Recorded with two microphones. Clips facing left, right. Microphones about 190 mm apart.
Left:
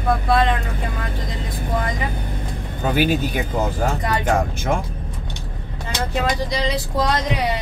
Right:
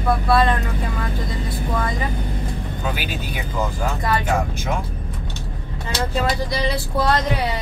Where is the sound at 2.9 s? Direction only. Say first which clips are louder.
Left 10 dB; 50° left (ahead or behind).